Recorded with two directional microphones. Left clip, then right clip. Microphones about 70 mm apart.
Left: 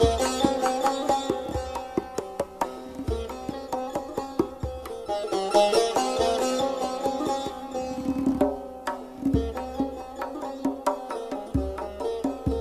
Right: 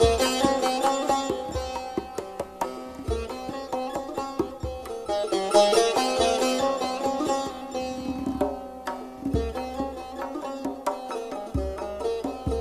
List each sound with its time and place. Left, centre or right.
0.0 s music: centre
1.0 s sitar: centre
1.7 s music: centre
4.4 s music: centre
5.0 s music: centre
8.0 s music: centre
9.4 s music: centre
10.2 s music: centre